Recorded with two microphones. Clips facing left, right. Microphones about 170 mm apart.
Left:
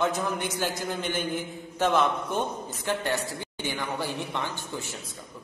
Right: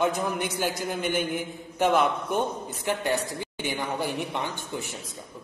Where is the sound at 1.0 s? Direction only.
55° right (ahead or behind).